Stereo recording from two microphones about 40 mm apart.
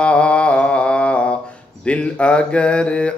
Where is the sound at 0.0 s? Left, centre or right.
Left.